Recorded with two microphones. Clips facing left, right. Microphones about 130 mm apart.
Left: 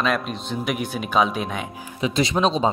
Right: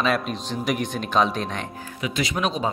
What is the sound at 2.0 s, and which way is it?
Speech, 30° left (ahead or behind).